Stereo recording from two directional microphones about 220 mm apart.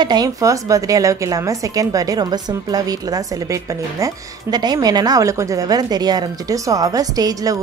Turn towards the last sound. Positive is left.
turn(degrees=-15)  # may be behind; listen again after turning